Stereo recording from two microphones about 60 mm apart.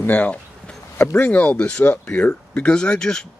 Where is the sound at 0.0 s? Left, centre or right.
Left.